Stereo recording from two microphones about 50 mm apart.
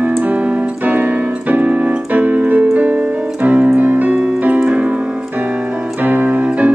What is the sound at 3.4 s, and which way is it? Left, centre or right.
Piano, right.